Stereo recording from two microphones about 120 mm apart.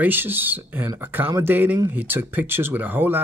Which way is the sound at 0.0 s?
15° right (ahead or behind).